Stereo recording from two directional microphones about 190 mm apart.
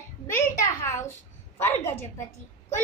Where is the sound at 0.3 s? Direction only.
15° left (ahead or behind).